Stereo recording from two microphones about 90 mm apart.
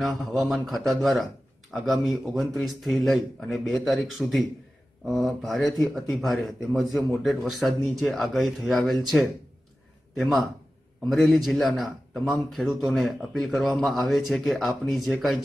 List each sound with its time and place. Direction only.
0.0 s a man's voice: centre (ahead or behind)
5.1 s a man's voice: centre (ahead or behind)
8.7 s speech: 10° left (ahead or behind)
10.1 s a man's voice: centre (ahead or behind)